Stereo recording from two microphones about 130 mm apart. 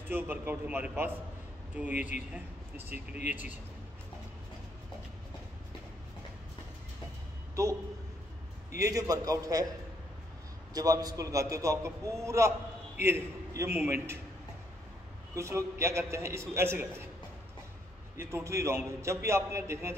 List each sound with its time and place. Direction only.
0.1 s speech: 15° right (ahead or behind)
8.7 s a man's voice: 25° right (ahead or behind)
10.7 s a man's voice: 30° right (ahead or behind)
15.3 s a man's voice: 20° right (ahead or behind)
18.1 s a man's voice: 20° right (ahead or behind)